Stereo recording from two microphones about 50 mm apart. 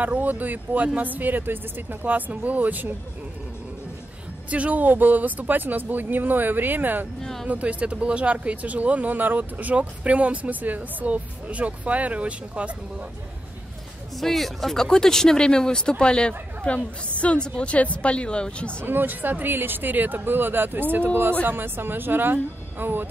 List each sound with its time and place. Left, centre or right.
0.0 s speech: right
4.5 s speech: right
7.2 s speech: centre
7.4 s speech: right
14.1 s speech: centre; by 18.9 s left
18.9 s speech: right